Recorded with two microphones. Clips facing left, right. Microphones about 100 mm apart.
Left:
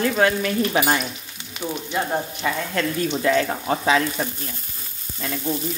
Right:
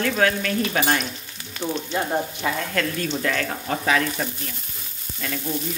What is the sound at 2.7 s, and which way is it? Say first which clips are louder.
Speech: left 2 dB; 15° left (ahead or behind).